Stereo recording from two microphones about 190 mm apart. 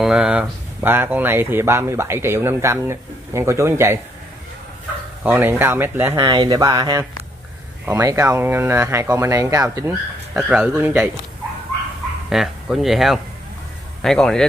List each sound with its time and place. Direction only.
0.0 s speech: 5° right (ahead or behind)
5.2 s speech: 10° right (ahead or behind)
6.1 s speech: 25° right (ahead or behind)
10.3 s speech: 5° right (ahead or behind)
12.3 s speech: centre (ahead or behind)